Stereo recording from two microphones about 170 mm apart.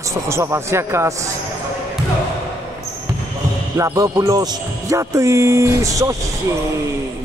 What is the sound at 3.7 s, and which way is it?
Speech, 20° right (ahead or behind).